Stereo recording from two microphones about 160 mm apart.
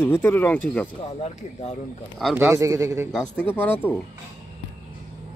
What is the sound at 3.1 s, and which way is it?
Speech, 5° left (ahead or behind).